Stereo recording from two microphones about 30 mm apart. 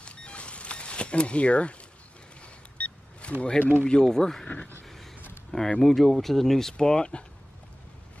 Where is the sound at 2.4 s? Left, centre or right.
Left.